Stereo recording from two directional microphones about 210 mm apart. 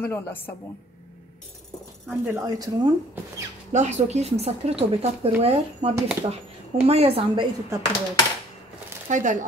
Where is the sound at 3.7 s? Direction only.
35° right (ahead or behind).